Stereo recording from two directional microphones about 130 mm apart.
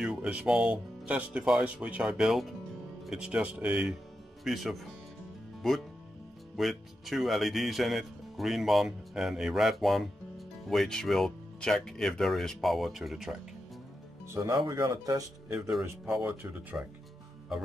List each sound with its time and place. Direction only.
0.0 s speech: 5° right (ahead or behind)
14.2 s speech: 20° right (ahead or behind)